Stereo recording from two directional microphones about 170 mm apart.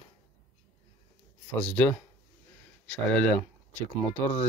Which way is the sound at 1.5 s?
10° left (ahead or behind).